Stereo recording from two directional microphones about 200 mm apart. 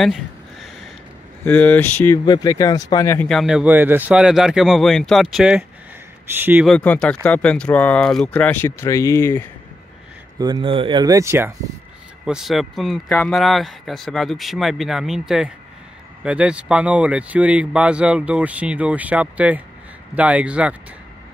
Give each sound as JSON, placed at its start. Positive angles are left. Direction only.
{"t": 0.0, "sound": "a sound", "side_deg": 0}
{"t": 1.4, "sound": "speech", "side_deg": 5}
{"t": 3.3, "sound": "speech", "side_deg": 0}
{"t": 10.4, "sound": "speech", "side_deg": -25}
{"t": 12.3, "sound": "speech", "side_deg": 0}